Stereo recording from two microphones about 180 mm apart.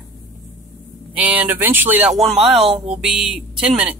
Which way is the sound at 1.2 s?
10° right (ahead or behind).